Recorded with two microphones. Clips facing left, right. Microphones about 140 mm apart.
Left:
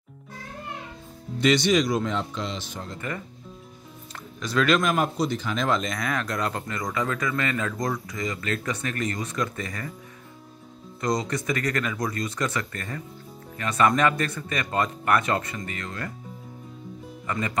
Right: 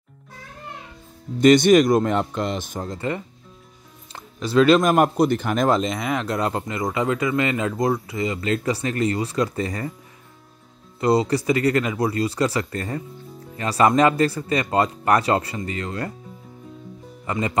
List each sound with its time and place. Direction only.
1.4 s speech: 50° right (ahead or behind)
4.1 s music: 30° right (ahead or behind)
4.9 s a man's voice: 55° right (ahead or behind)
5.7 s speech: 30° right (ahead or behind)
11.0 s speech: 30° right (ahead or behind)
17.3 s speech: 25° right (ahead or behind)